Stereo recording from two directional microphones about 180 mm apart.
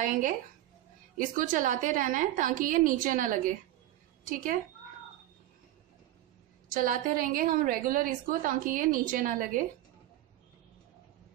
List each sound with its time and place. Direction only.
0.0 s a woman's voice: 45° right (ahead or behind)
6.7 s a woman's voice: 50° right (ahead or behind)